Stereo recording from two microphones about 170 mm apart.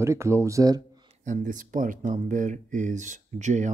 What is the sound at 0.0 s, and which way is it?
Speech, 15° right (ahead or behind).